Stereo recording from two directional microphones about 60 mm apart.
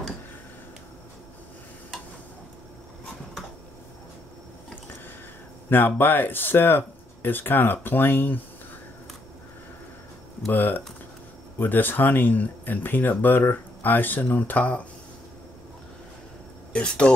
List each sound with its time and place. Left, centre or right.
5.7 s speech: left
10.5 s speech: left
16.7 s speech: centre